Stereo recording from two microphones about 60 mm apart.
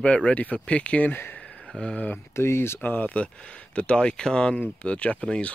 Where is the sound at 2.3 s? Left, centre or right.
Left.